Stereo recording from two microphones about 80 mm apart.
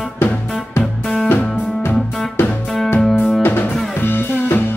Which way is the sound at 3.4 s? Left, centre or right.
Left.